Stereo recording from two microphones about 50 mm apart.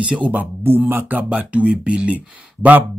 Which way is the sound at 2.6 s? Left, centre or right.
Right.